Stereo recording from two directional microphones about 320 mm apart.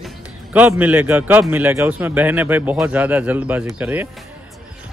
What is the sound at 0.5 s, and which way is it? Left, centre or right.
A man's voice, centre.